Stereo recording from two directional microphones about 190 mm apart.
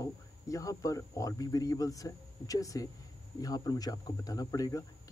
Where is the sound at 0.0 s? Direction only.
15° left (ahead or behind).